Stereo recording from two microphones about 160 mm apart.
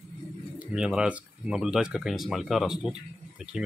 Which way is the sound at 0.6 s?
5° right (ahead or behind).